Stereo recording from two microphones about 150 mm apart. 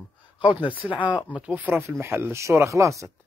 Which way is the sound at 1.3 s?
10° right (ahead or behind).